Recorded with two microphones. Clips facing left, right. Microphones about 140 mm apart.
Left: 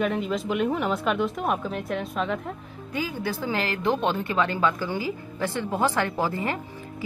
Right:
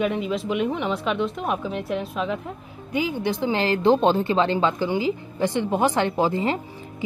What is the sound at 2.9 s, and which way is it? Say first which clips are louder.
A woman's voice: right 5 dB; 20° right (ahead or behind).